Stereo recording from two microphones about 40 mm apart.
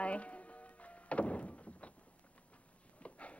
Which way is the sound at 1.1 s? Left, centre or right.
Left.